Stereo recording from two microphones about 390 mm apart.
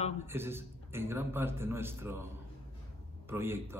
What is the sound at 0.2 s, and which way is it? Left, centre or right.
A man's voice, centre.